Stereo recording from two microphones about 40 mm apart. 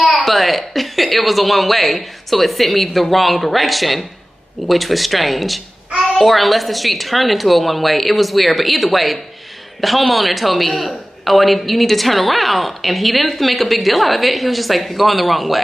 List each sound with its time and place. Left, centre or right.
0.1 s a man's voice: centre